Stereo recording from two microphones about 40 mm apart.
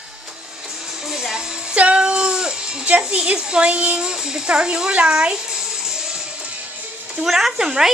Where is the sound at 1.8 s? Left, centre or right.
Right.